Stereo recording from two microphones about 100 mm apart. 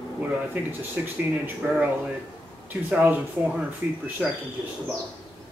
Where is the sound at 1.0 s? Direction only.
20° right (ahead or behind).